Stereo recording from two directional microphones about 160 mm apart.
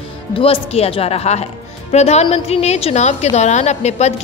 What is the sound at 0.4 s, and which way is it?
A woman's voice, 35° left (ahead or behind).